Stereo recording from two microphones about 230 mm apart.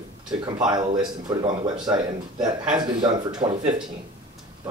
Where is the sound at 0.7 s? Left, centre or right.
Centre.